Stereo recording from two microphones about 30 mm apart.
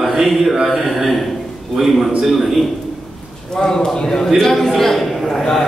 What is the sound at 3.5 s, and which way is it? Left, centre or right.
Speech, left.